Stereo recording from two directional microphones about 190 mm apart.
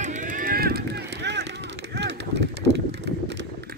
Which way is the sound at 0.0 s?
40° right (ahead or behind).